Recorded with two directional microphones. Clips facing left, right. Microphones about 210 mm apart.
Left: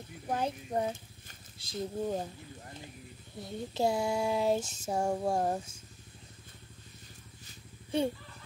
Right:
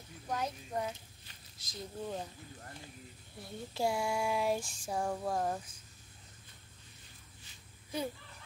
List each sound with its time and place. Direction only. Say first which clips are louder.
0.3 s female singing: left 5 dB; 30° left (ahead or behind)
1.6 s speech: left 8 dB; 35° left (ahead or behind)
3.4 s female singing: left 4 dB; 20° left (ahead or behind)
7.9 s female singing: left 7 dB; 30° left (ahead or behind)